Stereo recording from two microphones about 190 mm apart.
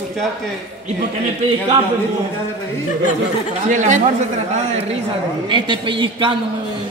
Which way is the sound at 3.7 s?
40° right (ahead or behind).